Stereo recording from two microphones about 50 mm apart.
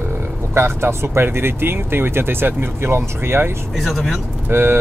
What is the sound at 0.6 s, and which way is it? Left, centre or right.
Speech, right.